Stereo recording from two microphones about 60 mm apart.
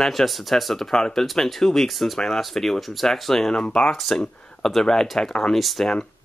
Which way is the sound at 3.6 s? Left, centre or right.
Centre.